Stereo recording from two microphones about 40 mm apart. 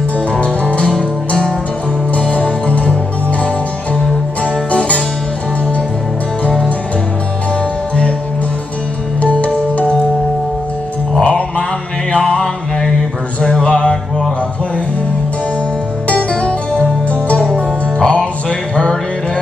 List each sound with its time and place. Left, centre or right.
0.3 s music: left
0.8 s music: centre
2.1 s music: left
4.6 s music: left
9.2 s music: left
11.2 s music: left
16.1 s music: left